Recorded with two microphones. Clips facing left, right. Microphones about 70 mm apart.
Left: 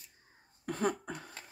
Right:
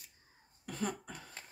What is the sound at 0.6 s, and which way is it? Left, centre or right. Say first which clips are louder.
Speech: left 6 dB; left.